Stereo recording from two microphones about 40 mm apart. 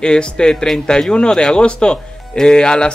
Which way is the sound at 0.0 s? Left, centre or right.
Left.